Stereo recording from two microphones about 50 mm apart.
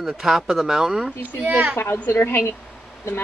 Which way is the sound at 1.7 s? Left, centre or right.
Left.